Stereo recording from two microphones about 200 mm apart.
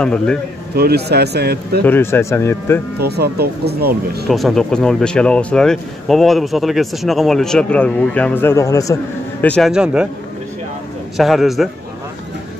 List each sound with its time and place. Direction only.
0.0 s speech: 5° left (ahead or behind)
0.7 s speech: 50° right (ahead or behind)
1.9 s speech: 10° left (ahead or behind)
3.0 s speech: 55° right (ahead or behind)
4.3 s speech: centre (ahead or behind); by 8.9 s 15° left (ahead or behind)
9.4 s speech: 5° left (ahead or behind)
11.1 s speech: centre (ahead or behind)